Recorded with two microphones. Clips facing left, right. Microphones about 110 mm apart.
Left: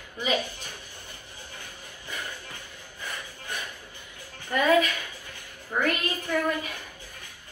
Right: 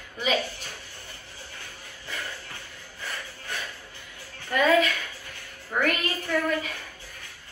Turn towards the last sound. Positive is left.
turn(degrees=15)  # may be behind; listen again after turning